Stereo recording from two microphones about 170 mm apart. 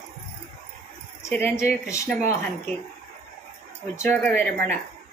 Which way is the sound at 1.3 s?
10° left (ahead or behind).